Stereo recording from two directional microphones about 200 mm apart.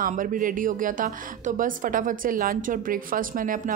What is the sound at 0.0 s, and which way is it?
A woman's voice, 45° right (ahead or behind).